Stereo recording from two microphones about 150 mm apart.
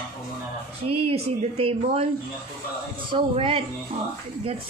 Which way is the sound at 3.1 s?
40° right (ahead or behind).